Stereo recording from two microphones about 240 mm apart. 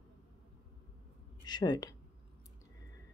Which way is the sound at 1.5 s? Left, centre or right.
Centre.